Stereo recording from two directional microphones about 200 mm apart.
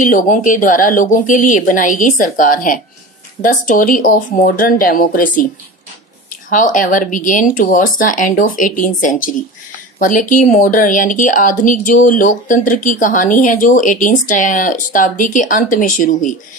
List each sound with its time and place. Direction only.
0.0 s a woman's voice: 40° left (ahead or behind)
6.5 s a woman's voice: 40° left (ahead or behind)